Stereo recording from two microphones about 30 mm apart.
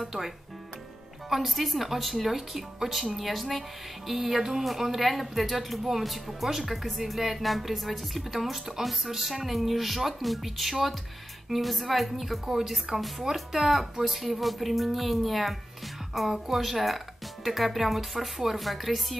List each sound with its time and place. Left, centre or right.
1.3 s speech: centre